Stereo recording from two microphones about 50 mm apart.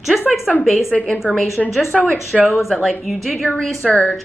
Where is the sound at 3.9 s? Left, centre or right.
Left.